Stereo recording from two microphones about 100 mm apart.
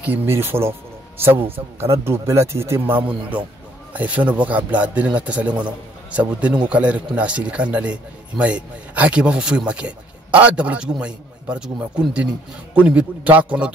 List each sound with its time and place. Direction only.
0.0 s a man's voice: 20° right (ahead or behind)